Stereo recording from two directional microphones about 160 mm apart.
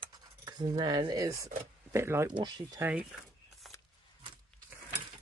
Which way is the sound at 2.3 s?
30° right (ahead or behind).